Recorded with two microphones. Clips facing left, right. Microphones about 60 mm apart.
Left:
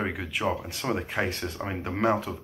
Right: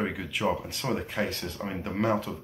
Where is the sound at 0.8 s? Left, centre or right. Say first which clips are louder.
Left 2 dB; centre.